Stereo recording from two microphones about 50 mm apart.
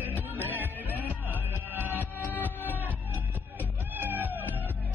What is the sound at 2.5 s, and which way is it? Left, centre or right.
Music, left.